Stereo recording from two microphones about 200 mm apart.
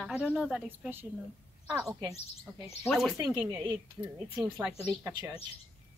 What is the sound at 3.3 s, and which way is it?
Speech, 20° right (ahead or behind).